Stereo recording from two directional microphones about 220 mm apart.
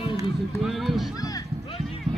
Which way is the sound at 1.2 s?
15° left (ahead or behind).